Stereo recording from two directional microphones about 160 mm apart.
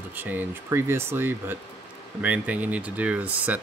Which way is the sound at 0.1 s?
10° right (ahead or behind).